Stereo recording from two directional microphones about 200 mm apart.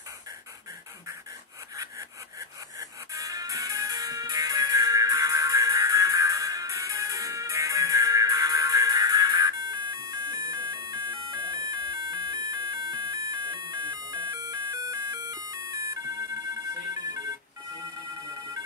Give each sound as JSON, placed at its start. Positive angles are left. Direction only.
{"t": 2.8, "sound": "music", "side_deg": -15}